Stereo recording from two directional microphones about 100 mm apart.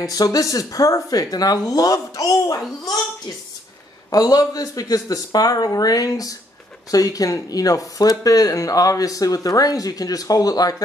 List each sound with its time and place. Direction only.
0.0 s speech: 35° left (ahead or behind)
4.1 s speech: 40° left (ahead or behind)